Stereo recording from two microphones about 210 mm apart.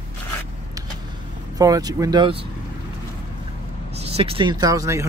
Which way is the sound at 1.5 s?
15° right (ahead or behind).